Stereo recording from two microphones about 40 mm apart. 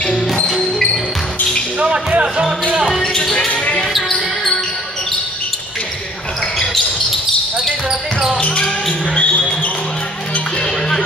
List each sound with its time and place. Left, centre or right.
2.0 s basketball bounce: right
3.0 s basketball bounce: centre
3.3 s basketball bounce: left
8.5 s basketball bounce: left